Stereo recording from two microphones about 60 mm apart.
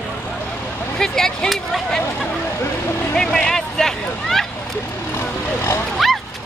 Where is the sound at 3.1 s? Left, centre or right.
Centre.